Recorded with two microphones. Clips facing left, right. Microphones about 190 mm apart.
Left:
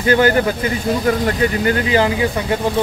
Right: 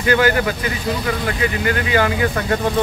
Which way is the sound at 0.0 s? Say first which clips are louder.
Left 3 dB; 35° left (ahead or behind).